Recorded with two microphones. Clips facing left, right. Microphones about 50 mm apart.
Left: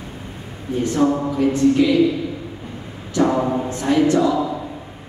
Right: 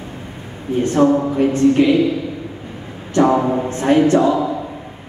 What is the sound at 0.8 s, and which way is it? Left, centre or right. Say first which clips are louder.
Speech: right 4 dB; right.